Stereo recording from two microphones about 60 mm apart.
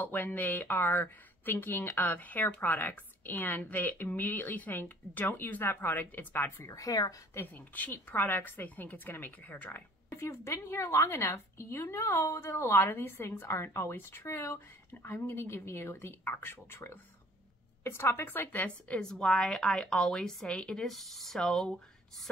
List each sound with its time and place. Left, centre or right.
0.0 s speech: left
6.6 s speech: left
7.5 s a woman's voice: left
15.0 s speech: left
18.9 s a woman's voice: centre
20.8 s speech: centre